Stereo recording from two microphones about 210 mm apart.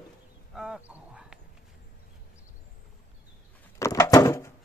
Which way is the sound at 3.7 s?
15° left (ahead or behind).